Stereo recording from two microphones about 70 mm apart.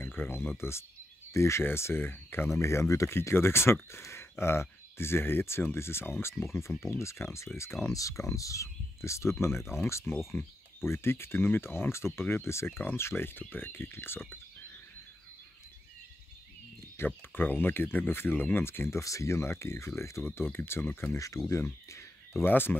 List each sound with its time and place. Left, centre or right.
0.0 s speech: left
3.2 s speech: left
7.5 s speech: centre
7.9 s speech: left
10.0 s speech: centre
10.8 s speech: left
16.9 s speech: left
20.5 s speech: left
22.4 s speech: left